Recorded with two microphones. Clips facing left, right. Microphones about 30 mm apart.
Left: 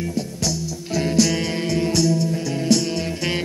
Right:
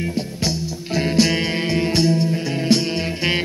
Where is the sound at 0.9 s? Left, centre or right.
Right.